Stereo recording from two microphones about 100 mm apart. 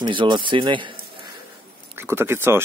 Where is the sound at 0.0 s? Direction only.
50° right (ahead or behind).